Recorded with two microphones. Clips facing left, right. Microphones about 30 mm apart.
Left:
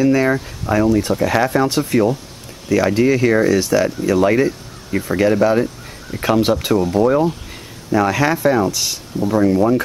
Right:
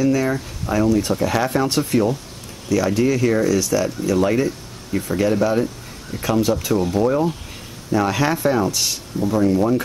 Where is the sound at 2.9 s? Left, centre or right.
Left.